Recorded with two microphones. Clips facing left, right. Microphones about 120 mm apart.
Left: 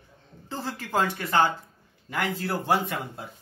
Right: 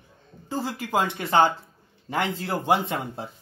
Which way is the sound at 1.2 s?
25° right (ahead or behind).